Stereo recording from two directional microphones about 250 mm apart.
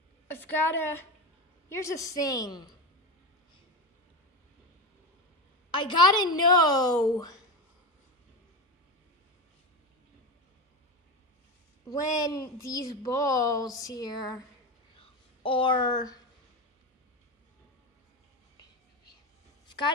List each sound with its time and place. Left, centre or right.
0.3 s a woman's voice: centre
5.7 s a woman's voice: centre
11.9 s a woman's voice: centre
15.0 s a sound: left